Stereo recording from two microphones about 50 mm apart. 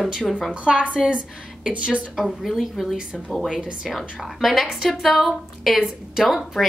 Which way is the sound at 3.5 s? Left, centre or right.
Right.